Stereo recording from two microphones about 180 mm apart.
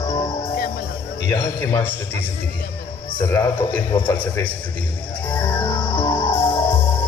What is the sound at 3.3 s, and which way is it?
Speech, 15° left (ahead or behind).